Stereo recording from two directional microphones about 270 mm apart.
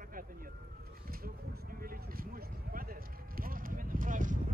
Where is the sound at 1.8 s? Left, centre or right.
Right.